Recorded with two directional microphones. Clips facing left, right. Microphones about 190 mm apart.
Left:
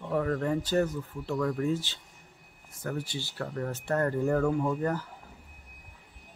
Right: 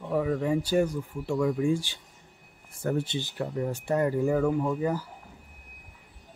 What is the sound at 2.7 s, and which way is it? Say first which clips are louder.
Speech: right 6 dB; 30° right (ahead or behind).